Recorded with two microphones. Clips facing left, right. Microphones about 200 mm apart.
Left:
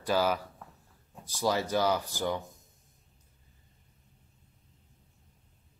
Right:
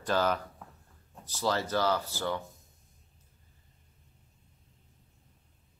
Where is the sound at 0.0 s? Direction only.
10° left (ahead or behind).